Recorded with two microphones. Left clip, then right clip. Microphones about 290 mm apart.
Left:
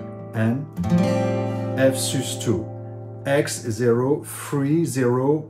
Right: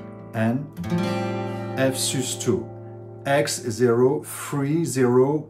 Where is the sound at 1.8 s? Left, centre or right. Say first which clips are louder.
Left 3 dB; centre.